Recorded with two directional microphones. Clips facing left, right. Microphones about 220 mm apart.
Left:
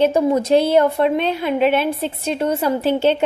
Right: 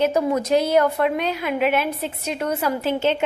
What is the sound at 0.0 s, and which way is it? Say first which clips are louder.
A woman's voice: left 4 dB; 30° left (ahead or behind).